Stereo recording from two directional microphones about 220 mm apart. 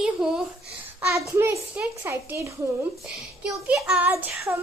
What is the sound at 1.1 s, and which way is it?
A child's voice, 15° right (ahead or behind).